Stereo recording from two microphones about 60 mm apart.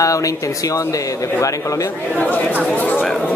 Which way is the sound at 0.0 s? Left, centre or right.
Left.